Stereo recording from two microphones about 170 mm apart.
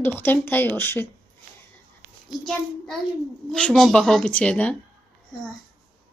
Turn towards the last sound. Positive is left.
turn(degrees=5)  # may be behind; listen again after turning